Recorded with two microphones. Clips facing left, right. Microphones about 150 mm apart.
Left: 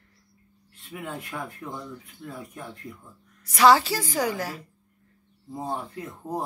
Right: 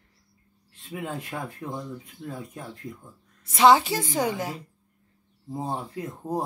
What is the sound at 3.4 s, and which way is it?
A woman's voice, 25° right (ahead or behind).